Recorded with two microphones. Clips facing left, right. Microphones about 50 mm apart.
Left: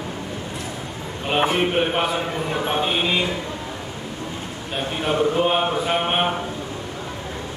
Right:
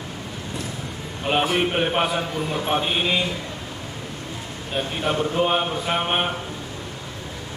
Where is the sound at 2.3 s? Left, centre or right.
Left.